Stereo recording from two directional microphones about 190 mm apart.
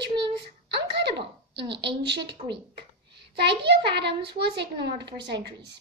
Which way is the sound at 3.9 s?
65° right (ahead or behind).